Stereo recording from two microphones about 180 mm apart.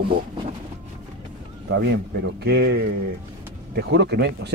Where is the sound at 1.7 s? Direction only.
75° right (ahead or behind).